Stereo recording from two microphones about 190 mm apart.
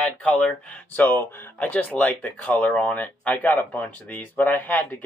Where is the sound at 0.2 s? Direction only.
5° left (ahead or behind).